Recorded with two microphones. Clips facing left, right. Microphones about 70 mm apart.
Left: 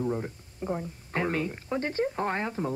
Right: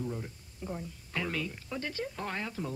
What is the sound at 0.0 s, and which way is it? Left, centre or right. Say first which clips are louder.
Speech: left 8 dB; left.